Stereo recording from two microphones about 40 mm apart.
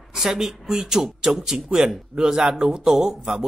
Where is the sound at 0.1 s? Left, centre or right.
Centre.